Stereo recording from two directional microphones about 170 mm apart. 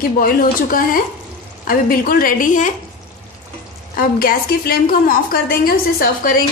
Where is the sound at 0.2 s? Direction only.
55° left (ahead or behind).